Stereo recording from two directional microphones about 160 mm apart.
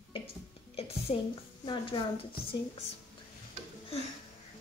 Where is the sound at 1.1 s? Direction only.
40° left (ahead or behind).